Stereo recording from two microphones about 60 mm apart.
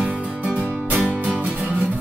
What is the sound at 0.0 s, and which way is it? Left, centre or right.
Music, right.